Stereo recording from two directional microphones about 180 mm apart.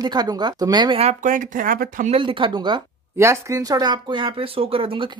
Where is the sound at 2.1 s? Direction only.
30° right (ahead or behind).